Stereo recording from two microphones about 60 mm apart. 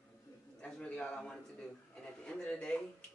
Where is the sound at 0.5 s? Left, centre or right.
Centre.